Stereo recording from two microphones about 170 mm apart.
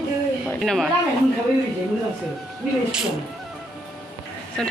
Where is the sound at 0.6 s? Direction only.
5° left (ahead or behind).